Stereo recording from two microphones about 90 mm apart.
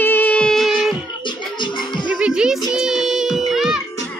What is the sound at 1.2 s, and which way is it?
Music, 60° left (ahead or behind).